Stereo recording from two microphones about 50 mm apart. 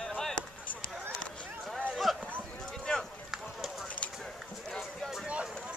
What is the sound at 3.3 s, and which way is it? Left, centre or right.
Clip-clop, centre.